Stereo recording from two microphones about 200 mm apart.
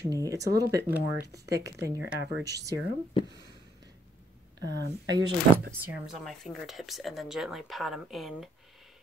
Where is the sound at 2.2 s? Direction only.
55° right (ahead or behind).